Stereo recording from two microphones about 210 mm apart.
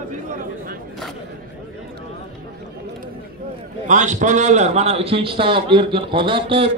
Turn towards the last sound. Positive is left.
turn(degrees=-25)  # may be behind; listen again after turning